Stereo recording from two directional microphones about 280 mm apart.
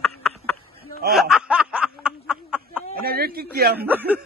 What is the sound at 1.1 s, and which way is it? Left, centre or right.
Snicker, centre.